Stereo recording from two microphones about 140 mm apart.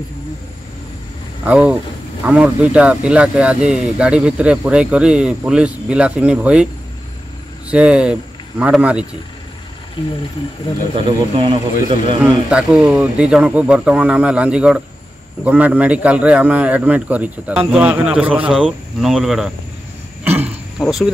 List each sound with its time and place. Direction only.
1.4 s speech: 10° right (ahead or behind)
7.7 s speech: 10° right (ahead or behind)
10.0 s speech: 35° left (ahead or behind)
11.1 s speech: 40° right (ahead or behind)
12.2 s speech: 5° right (ahead or behind)
20.2 s a sound: 15° right (ahead or behind)
20.8 s speech: centre (ahead or behind)